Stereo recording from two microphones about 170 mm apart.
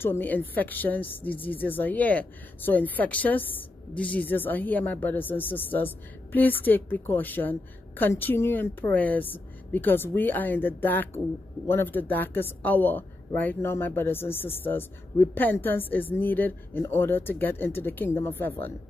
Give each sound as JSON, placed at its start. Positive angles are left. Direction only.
{"t": 0.0, "sound": "a woman's voice", "side_deg": 10}